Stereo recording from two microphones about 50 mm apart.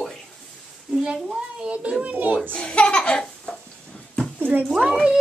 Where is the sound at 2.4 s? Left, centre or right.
Centre.